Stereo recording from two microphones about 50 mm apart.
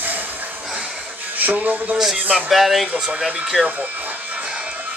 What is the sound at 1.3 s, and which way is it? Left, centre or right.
Speech, right.